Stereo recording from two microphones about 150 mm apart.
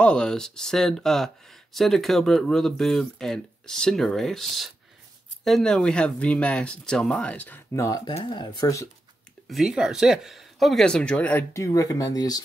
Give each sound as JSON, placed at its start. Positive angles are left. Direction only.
{"t": 0.0, "sound": "speech", "side_deg": 5}
{"t": 7.7, "sound": "speech", "side_deg": 20}
{"t": 9.5, "sound": "speech", "side_deg": 0}